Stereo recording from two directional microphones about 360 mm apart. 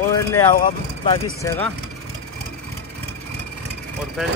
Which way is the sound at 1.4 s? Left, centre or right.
Centre.